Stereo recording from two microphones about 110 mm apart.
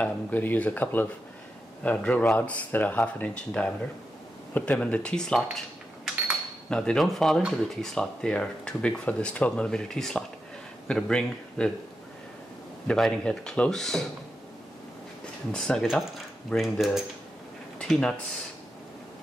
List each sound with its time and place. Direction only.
0.0 s speech: 15° left (ahead or behind)
6.7 s speech: 5° left (ahead or behind)
12.8 s speech: 5° left (ahead or behind)
15.5 s speech: 10° left (ahead or behind)